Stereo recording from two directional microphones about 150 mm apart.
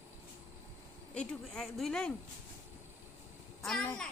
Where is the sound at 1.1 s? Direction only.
5° left (ahead or behind).